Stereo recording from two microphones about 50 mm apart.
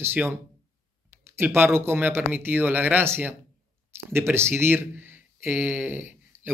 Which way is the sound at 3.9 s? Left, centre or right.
Right.